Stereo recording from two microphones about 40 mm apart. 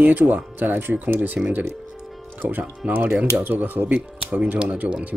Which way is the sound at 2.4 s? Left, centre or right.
Right.